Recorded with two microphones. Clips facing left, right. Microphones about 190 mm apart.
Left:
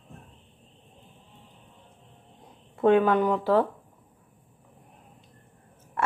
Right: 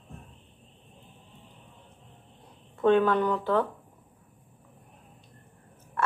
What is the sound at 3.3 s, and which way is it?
Speech, 30° left (ahead or behind).